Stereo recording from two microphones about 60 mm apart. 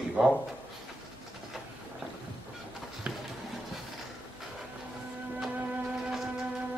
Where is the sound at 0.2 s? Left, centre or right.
Right.